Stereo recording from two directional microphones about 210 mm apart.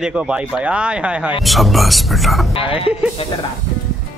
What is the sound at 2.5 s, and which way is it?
Speech, 25° left (ahead or behind).